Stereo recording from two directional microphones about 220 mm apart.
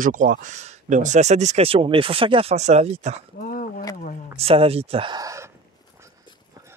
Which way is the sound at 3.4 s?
40° left (ahead or behind).